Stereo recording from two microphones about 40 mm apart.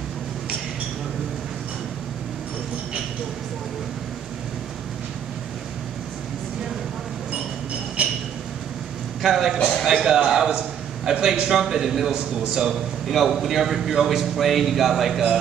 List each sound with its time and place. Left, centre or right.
8.0 s a sound: right
9.2 s a man's voice: centre
12.6 s a man's voice: centre